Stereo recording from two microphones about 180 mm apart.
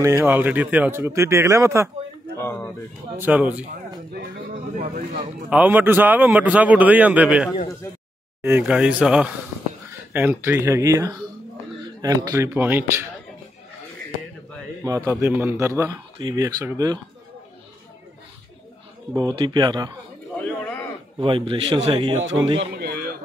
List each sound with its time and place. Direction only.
0.0 s a man's voice: 15° right (ahead or behind)
2.3 s a sound: 15° left (ahead or behind)
3.3 s a man's voice: 10° right (ahead or behind)
4.1 s a sound: 60° right (ahead or behind)
5.5 s a man's voice: 10° right (ahead or behind)
14.8 s a man's voice: 15° right (ahead or behind)
19.1 s a man's voice: 20° right (ahead or behind)
21.2 s a man's voice: 30° right (ahead or behind)
22.2 s a man's voice: 90° right
22.7 s a sound: 60° right (ahead or behind)